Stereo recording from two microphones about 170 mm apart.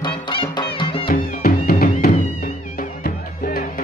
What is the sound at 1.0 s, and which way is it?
Music, 60° left (ahead or behind).